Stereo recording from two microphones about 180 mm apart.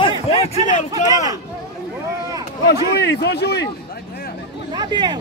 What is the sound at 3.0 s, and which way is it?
Speech, 70° left (ahead or behind).